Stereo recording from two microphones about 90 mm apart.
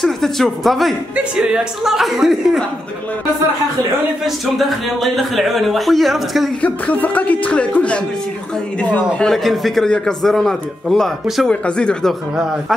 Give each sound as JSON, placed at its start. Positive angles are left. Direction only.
{"t": 0.0, "sound": "speech", "side_deg": 0}
{"t": 1.1, "sound": "speech", "side_deg": -10}
{"t": 4.2, "sound": "speech", "side_deg": 0}
{"t": 6.6, "sound": "speech", "side_deg": 15}
{"t": 9.2, "sound": "speech", "side_deg": 0}